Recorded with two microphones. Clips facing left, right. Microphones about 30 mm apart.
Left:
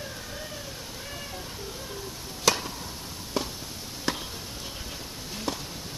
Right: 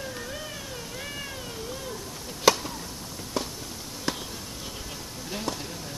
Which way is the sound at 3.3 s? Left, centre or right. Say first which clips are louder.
Left 1 dB; centre.